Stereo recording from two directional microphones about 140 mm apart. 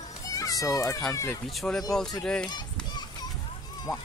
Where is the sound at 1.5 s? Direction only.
Centre (ahead or behind).